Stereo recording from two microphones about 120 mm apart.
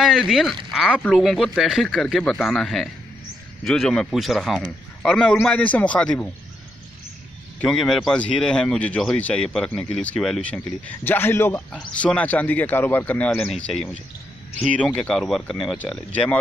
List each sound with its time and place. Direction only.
0.0 s a man's voice: 5° right (ahead or behind)
7.6 s speech: 5° left (ahead or behind)
13.3 s a man's voice: 5° left (ahead or behind)